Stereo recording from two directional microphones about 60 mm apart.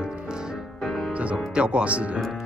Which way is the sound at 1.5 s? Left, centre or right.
Centre.